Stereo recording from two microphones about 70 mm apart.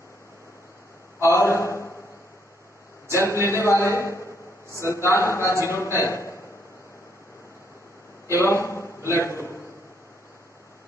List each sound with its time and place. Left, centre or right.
1.2 s a sound: left
3.1 s a man's voice: left
8.3 s a man's voice: left